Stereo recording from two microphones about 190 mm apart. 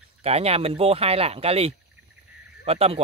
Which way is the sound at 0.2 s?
35° right (ahead or behind).